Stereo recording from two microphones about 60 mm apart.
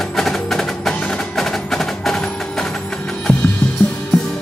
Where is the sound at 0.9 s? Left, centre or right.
Centre.